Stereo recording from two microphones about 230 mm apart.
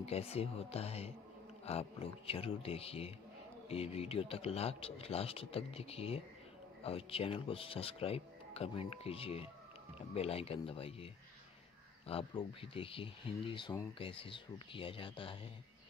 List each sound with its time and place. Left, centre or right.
0.0 s speech: left
12.1 s speech: left